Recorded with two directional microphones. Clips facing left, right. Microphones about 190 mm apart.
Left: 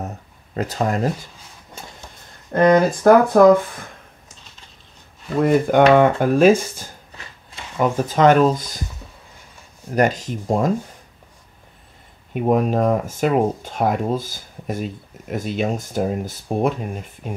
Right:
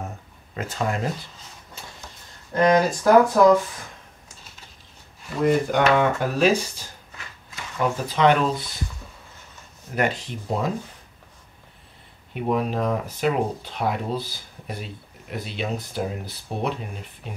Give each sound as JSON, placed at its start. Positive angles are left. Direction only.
{"t": 0.6, "sound": "speech", "side_deg": 40}
{"t": 1.8, "sound": "a sound", "side_deg": 50}
{"t": 2.5, "sound": "speech", "side_deg": 55}
{"t": 5.7, "sound": "speech", "side_deg": 50}
{"t": 8.1, "sound": "speech", "side_deg": 45}
{"t": 9.9, "sound": "speech", "side_deg": 40}
{"t": 12.4, "sound": "speech", "side_deg": 45}